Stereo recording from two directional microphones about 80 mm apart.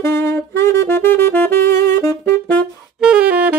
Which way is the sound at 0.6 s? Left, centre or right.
Left.